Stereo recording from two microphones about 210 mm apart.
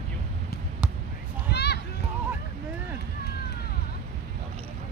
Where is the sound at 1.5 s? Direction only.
50° left (ahead or behind).